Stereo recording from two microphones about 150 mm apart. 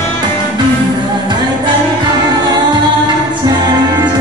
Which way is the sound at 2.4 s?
25° right (ahead or behind).